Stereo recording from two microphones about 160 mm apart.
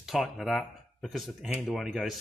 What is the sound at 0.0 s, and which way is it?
Speech, centre (ahead or behind).